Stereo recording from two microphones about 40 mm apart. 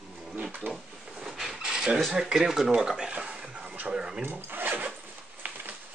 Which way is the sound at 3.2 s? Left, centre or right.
Right.